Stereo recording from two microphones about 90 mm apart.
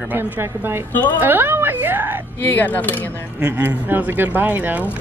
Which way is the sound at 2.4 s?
20° left (ahead or behind).